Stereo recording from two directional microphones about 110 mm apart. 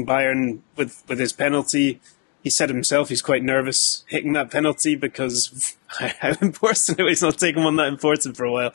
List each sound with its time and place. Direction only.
0.0 s speech: 15° left (ahead or behind)